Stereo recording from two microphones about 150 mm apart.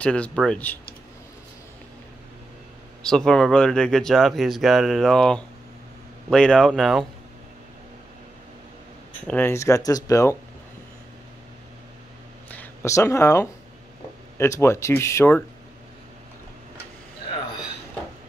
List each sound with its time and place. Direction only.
0.0 s speech: 5° left (ahead or behind)
3.1 s speech: 5° left (ahead or behind)
9.3 s speech: 15° left (ahead or behind)
12.4 s speech: 15° left (ahead or behind)